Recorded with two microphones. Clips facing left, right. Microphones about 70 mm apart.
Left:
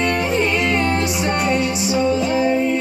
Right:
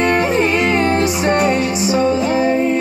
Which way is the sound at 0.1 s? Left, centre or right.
Right.